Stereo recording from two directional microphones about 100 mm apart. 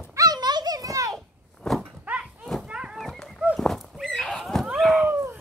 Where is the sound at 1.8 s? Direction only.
10° right (ahead or behind).